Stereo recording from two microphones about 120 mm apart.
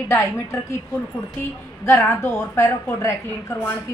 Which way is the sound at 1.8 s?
20° left (ahead or behind).